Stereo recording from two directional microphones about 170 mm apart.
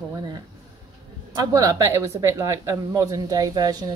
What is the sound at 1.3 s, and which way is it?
Speech, 20° right (ahead or behind).